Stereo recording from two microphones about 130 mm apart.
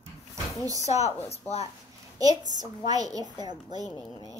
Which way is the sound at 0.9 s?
55° left (ahead or behind).